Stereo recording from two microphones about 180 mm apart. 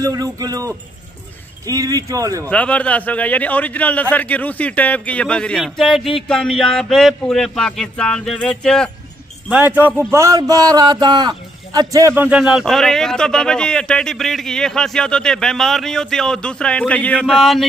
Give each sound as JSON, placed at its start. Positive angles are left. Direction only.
{"t": 0.0, "sound": "speech", "side_deg": -20}
{"t": 2.5, "sound": "a man's voice", "side_deg": 5}
{"t": 9.5, "sound": "speech", "side_deg": -10}